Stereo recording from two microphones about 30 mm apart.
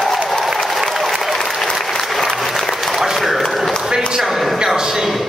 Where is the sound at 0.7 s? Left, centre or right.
Centre.